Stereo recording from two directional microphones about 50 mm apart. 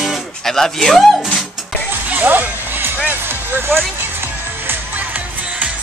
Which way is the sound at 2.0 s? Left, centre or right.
Right.